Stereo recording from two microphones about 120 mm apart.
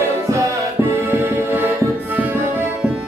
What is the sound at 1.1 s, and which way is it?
Music, 20° right (ahead or behind).